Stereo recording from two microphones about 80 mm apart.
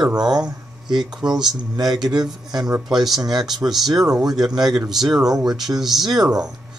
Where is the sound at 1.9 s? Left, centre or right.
Right.